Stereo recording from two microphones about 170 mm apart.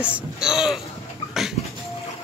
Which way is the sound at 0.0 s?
5° right (ahead or behind).